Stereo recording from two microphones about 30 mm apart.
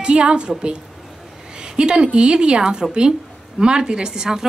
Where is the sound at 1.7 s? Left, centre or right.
Right.